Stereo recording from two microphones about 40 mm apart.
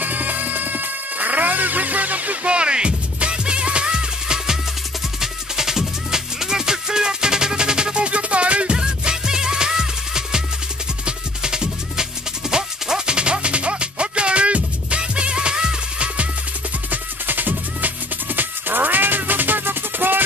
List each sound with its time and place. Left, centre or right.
0.0 s music: right
8.7 s music: centre
16.9 s music: right